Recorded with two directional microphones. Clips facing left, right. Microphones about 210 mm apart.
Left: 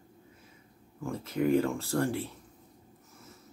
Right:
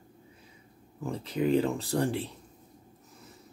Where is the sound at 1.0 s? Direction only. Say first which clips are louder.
Even; 15° right (ahead or behind).